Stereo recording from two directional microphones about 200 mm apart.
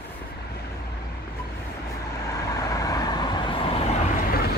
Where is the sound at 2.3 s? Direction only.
15° left (ahead or behind).